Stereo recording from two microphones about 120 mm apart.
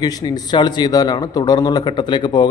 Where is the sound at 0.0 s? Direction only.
35° left (ahead or behind).